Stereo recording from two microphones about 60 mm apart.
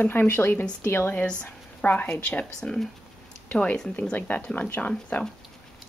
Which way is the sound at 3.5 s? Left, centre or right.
Left.